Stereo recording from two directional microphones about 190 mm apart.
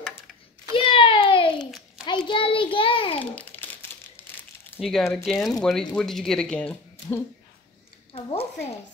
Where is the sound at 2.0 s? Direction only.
25° left (ahead or behind).